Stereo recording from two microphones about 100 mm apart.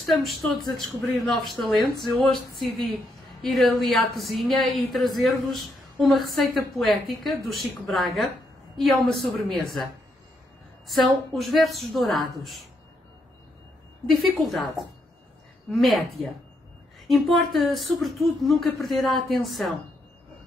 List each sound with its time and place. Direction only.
0.1 s a woman's voice: centre (ahead or behind)
3.4 s a woman's voice: centre (ahead or behind)
10.9 s a woman's voice: centre (ahead or behind)
14.1 s a woman's voice: centre (ahead or behind)
17.1 s a woman's voice: centre (ahead or behind)